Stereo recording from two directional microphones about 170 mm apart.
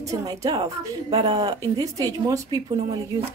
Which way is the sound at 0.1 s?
20° right (ahead or behind).